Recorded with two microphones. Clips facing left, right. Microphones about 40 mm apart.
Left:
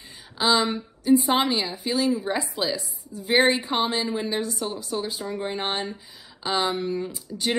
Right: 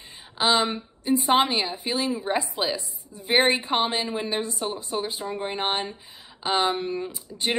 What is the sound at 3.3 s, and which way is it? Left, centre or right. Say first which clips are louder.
Speech: left 1 dB; right.